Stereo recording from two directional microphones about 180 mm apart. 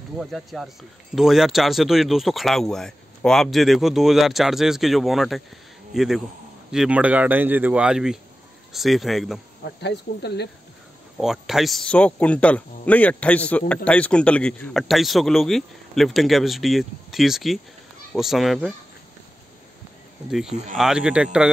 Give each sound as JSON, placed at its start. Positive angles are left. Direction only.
{"t": 0.2, "sound": "speech", "side_deg": 0}
{"t": 9.8, "sound": "speech", "side_deg": 65}
{"t": 11.1, "sound": "speech", "side_deg": 0}
{"t": 20.2, "sound": "speech", "side_deg": 0}